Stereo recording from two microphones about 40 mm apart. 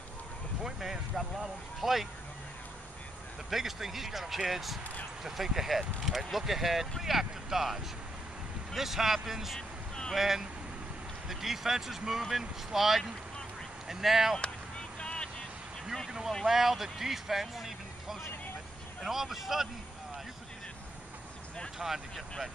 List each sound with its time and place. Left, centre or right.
0.7 s speech: centre
3.4 s speech: centre
9.6 s vehicle: centre
10.1 s speech: centre
15.0 s vehicle: left
16.4 s speech: centre
21.7 s speech: centre